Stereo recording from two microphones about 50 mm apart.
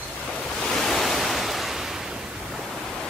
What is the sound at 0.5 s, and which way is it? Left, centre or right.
Waves, centre.